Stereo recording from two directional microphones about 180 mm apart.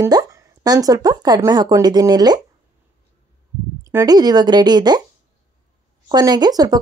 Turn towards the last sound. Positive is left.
turn(degrees=-20)  # may be behind; listen again after turning